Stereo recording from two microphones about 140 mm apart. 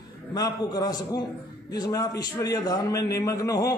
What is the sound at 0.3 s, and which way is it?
A man's voice, 30° left (ahead or behind).